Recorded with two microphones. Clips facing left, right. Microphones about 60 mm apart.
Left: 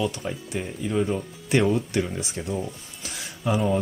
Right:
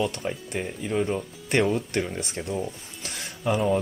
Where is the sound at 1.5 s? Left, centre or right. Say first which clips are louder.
Left 2 dB; centre.